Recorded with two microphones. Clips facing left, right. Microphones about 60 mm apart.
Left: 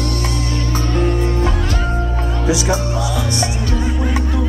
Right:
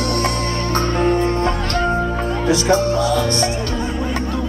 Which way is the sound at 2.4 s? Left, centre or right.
Centre.